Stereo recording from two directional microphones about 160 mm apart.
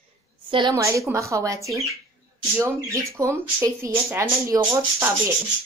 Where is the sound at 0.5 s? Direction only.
30° right (ahead or behind).